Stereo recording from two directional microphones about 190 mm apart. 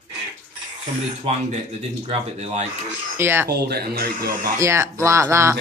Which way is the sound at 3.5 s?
60° right (ahead or behind).